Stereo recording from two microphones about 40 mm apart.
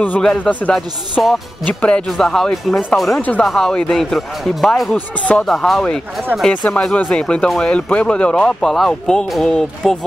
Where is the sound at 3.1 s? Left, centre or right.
Left.